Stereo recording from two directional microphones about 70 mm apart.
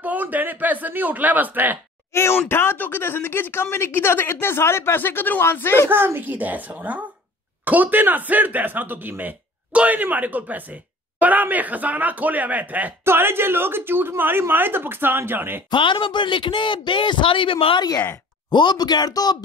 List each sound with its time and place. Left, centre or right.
0.0 s speech: right
2.1 s speech: left
5.9 s speech: right
13.0 s speech: right
16.1 s speech: left
17.7 s speech: left
18.5 s speech: left